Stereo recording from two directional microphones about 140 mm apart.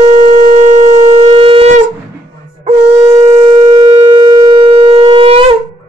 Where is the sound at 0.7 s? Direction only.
55° right (ahead or behind).